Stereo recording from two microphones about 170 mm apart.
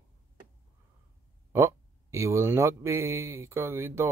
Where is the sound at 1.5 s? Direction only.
15° right (ahead or behind).